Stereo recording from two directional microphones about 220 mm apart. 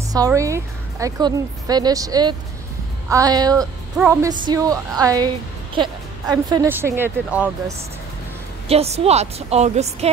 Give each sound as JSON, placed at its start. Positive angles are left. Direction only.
{"t": 0.1, "sound": "a woman's voice", "side_deg": -15}
{"t": 6.3, "sound": "a woman's voice", "side_deg": -15}
{"t": 8.6, "sound": "a woman's voice", "side_deg": -30}